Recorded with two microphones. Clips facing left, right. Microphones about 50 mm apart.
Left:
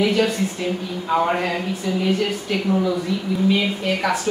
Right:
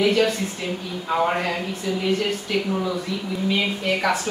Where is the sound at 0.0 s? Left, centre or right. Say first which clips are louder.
Left 1 dB; centre.